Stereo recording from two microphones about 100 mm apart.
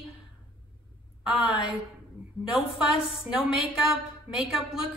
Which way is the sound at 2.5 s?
5° right (ahead or behind).